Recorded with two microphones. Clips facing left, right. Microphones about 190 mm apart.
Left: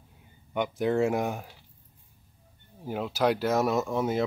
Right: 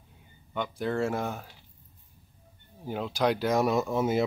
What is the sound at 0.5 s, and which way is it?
Speech, 15° left (ahead or behind).